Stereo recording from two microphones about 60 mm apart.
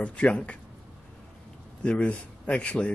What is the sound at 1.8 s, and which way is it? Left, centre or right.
Speech, left.